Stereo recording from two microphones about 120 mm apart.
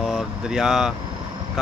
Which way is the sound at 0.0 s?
Centre (ahead or behind).